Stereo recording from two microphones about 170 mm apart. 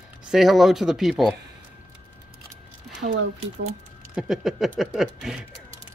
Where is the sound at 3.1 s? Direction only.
90° right.